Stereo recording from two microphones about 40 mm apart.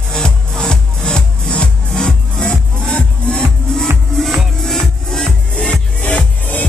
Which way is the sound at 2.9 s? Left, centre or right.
Left.